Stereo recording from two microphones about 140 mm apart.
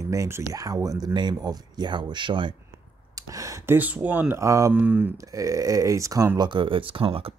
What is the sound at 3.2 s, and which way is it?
Speech, 25° right (ahead or behind).